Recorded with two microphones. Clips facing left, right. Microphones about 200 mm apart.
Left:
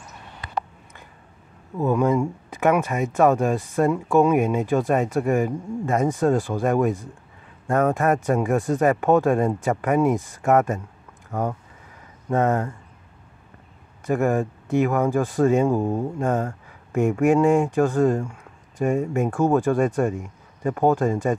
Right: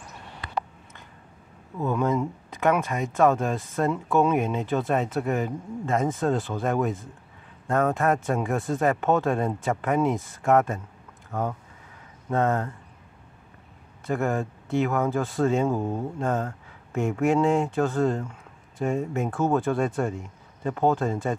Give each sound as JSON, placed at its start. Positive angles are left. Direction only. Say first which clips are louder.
{"t": 1.8, "sound": "speech", "louder": "left 4 dB", "side_deg": 15}
{"t": 7.9, "sound": "speech", "louder": "left 3 dB", "side_deg": 0}
{"t": 8.8, "sound": "speech", "louder": "left 4 dB", "side_deg": 15}
{"t": 9.4, "sound": "speech", "louder": "left 4 dB", "side_deg": 0}
{"t": 11.3, "sound": "speech", "louder": "left 3 dB", "side_deg": 15}
{"t": 14.0, "sound": "speech", "louder": "left 5 dB", "side_deg": 15}